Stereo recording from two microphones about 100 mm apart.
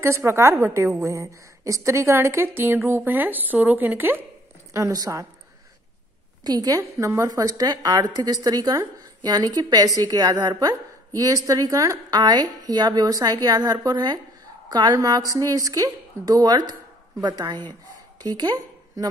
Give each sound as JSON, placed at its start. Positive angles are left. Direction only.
{"t": 0.0, "sound": "a woman's voice", "side_deg": -25}
{"t": 4.7, "sound": "a woman's voice", "side_deg": -35}
{"t": 6.4, "sound": "a woman's voice", "side_deg": -40}
{"t": 6.8, "sound": "a woman's voice", "side_deg": -30}